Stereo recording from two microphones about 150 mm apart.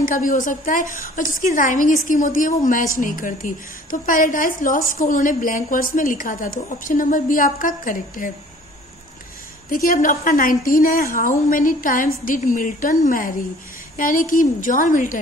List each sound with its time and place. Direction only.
0.0 s a woman's voice: 60° left (ahead or behind)
9.7 s a woman's voice: 65° left (ahead or behind)